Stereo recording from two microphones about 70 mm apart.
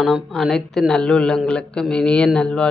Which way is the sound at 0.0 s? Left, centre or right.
Centre.